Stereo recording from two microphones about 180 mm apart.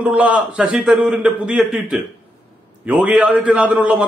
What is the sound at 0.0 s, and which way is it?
A man's voice, 5° right (ahead or behind).